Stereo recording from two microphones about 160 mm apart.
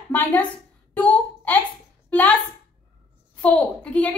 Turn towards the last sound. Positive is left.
turn(degrees=10)  # may be behind; listen again after turning